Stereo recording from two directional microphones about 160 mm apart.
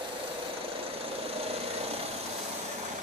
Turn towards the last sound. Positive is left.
turn(degrees=-40)  # may be behind; listen again after turning